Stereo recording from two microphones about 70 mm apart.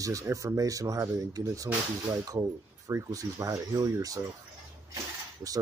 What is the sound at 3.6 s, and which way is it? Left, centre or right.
Speech, right.